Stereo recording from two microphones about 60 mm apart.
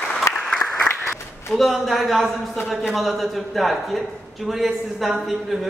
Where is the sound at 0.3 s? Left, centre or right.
Left.